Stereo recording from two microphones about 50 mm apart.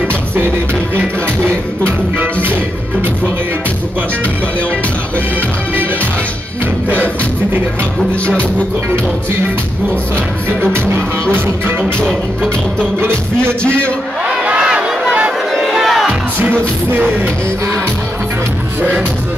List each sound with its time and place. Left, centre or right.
1.4 s music: right
14.2 s crowd: right
15.7 s music: centre
16.3 s music: right